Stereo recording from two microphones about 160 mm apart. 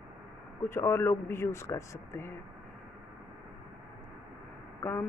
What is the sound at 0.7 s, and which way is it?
Speech, 15° left (ahead or behind).